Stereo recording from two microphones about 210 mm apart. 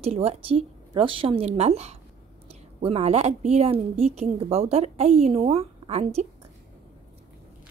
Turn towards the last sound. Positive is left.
turn(degrees=-30)  # may be behind; listen again after turning